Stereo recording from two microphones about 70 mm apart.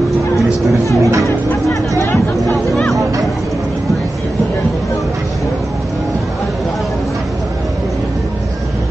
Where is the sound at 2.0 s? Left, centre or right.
Left.